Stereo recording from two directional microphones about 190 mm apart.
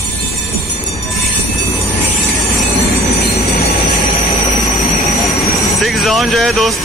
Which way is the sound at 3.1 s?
55° left (ahead or behind).